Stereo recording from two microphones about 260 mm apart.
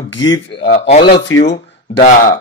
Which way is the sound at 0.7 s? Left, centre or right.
Left.